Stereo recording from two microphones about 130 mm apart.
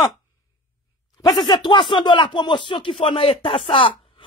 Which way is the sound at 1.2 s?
30° left (ahead or behind).